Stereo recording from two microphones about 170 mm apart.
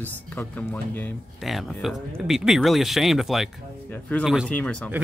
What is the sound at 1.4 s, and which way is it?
Speech, centre (ahead or behind).